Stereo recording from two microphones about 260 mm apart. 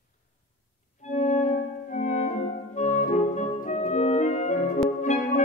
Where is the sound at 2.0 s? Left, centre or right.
Left.